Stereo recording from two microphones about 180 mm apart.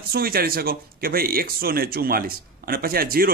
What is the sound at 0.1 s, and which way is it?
A man's voice, 55° right (ahead or behind).